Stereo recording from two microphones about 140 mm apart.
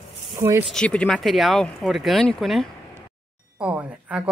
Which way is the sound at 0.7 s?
5° left (ahead or behind).